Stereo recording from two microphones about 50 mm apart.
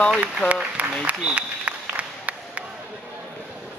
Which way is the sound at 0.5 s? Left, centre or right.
Right.